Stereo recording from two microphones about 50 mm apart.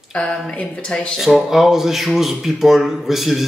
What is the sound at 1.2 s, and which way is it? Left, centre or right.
A man's voice, centre.